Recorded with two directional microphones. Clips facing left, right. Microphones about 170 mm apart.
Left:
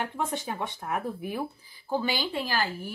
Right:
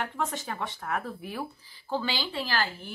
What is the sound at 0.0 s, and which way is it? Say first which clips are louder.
Speech: left 1 dB; 15° left (ahead or behind).